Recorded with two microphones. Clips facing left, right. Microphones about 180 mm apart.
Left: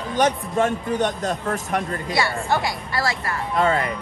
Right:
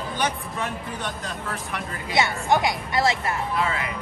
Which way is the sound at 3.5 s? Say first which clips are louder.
Left 10 dB; 40° left (ahead or behind).